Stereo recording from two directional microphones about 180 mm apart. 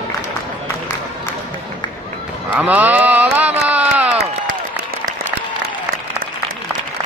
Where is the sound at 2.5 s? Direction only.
10° right (ahead or behind).